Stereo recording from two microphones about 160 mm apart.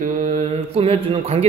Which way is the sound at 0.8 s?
35° right (ahead or behind).